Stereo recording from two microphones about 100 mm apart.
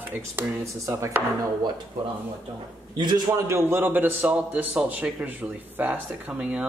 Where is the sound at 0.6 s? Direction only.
30° right (ahead or behind).